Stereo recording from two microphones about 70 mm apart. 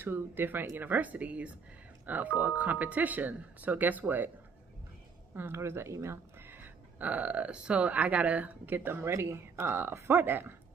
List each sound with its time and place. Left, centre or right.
0.0 s speech: right
5.3 s speech: right